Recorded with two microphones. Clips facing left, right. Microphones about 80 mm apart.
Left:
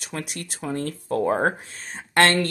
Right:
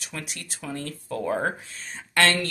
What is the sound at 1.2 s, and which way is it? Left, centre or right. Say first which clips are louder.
Speech: left 4 dB; left.